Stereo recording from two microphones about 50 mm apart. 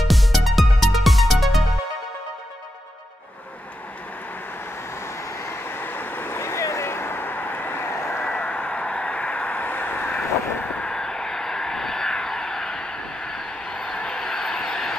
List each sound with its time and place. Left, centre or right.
0.1 s music: centre
5.4 s vehicle: left
6.9 s vehicle: left
8.3 s a sound: left
10.7 s vehicle: centre